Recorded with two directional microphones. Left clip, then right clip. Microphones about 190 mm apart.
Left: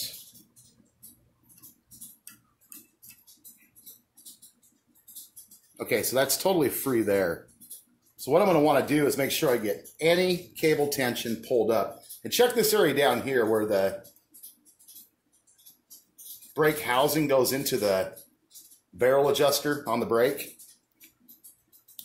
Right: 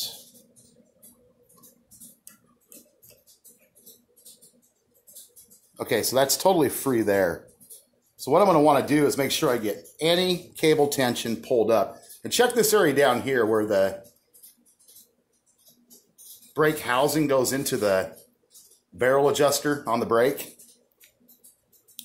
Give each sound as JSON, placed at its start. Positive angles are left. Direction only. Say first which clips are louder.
{"t": 5.8, "sound": "speech", "louder": "right 3 dB", "side_deg": -15}
{"t": 16.5, "sound": "speech", "louder": "right 2 dB", "side_deg": -20}